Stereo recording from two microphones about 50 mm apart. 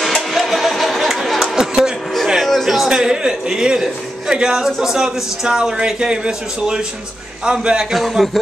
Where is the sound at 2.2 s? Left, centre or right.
Centre.